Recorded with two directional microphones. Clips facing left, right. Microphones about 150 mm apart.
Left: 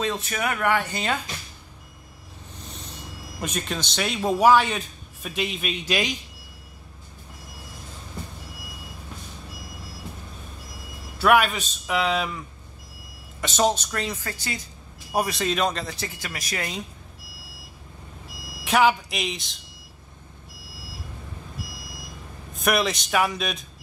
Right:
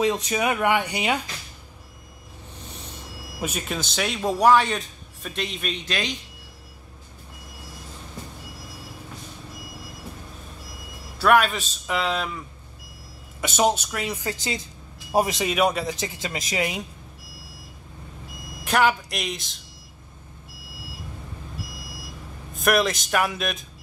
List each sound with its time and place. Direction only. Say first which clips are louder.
0.0 s speech: right 4 dB; 15° right (ahead or behind)
3.3 s a man's voice: right 1 dB; 5° right (ahead or behind); by 6.1 s 10° left (ahead or behind)
11.1 s a man's voice: even; centre (ahead or behind)
13.4 s speech: right 1 dB; 10° right (ahead or behind)
14.2 s a woman's voice: right 4 dB; 20° right (ahead or behind)
18.6 s speech: left 1 dB; centre (ahead or behind)
22.6 s a man's voice: right 2 dB; centre (ahead or behind)